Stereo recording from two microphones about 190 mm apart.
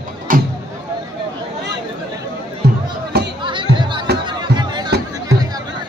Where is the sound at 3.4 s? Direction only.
25° right (ahead or behind).